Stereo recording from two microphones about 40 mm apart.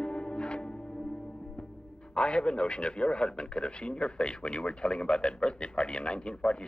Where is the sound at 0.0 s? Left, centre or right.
Left.